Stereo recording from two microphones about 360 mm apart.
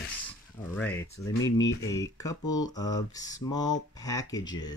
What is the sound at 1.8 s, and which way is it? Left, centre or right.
Mantra, centre.